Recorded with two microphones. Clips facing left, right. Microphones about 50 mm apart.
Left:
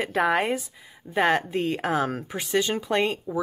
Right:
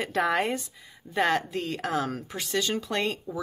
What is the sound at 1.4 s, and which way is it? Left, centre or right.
Speech, left.